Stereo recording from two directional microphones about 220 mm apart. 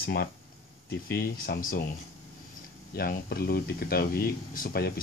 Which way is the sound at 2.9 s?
45° left (ahead or behind).